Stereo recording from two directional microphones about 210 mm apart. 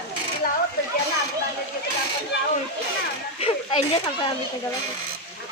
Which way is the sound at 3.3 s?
25° left (ahead or behind).